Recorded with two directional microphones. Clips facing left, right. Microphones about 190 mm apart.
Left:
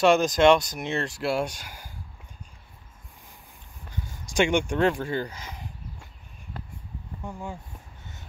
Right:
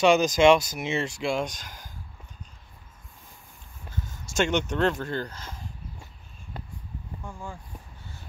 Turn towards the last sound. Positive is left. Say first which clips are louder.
# left 3 dB
turn(degrees=20)  # may be behind; listen again after turning